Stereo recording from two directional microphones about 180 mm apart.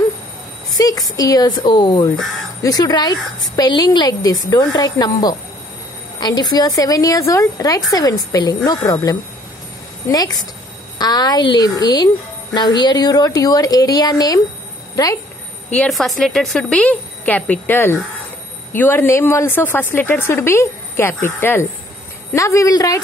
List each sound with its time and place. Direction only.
0.7 s a woman's voice: 20° left (ahead or behind)
15.7 s speech: 5° left (ahead or behind)